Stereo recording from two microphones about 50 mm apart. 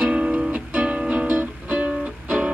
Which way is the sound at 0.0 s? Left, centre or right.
Right.